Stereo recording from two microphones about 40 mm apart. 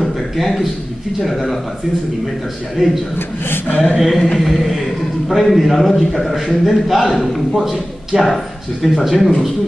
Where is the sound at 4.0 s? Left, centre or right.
Centre.